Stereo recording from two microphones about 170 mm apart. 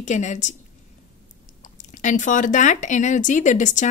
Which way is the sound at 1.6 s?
45° left (ahead or behind).